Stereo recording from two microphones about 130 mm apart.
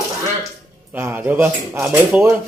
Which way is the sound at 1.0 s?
15° right (ahead or behind).